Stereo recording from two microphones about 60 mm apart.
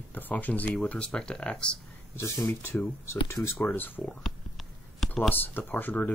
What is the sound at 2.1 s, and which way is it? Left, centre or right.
Speech, left.